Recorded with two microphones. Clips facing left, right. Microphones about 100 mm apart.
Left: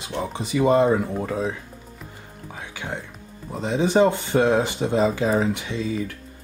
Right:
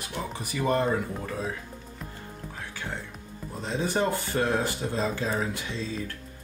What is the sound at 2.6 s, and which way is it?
Music, 15° left (ahead or behind).